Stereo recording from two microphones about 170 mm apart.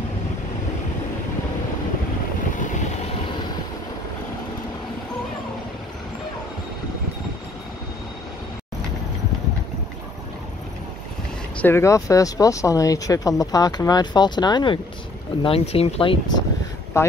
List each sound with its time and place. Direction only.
11.6 s speech: 15° left (ahead or behind)
17.0 s speech: 15° left (ahead or behind)